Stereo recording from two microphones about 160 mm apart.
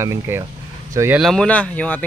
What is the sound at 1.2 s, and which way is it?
Speech, 5° left (ahead or behind).